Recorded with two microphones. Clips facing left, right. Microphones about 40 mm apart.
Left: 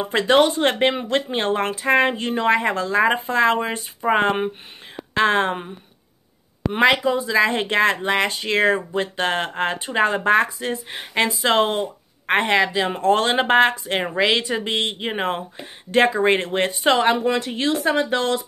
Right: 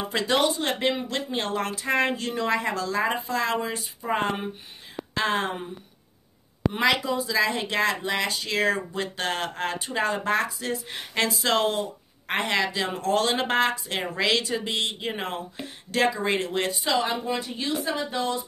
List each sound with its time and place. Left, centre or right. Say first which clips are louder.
0.1 s speech: left 7 dB; left
6.7 s speech: left 7 dB; left
14.1 s speech: left 4 dB; left
17.7 s speech: left 7 dB; left